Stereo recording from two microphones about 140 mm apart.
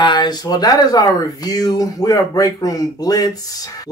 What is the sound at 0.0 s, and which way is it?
Speech, 30° left (ahead or behind).